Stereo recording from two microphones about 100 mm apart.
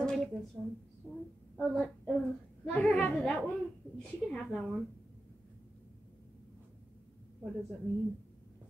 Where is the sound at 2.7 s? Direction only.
10° left (ahead or behind).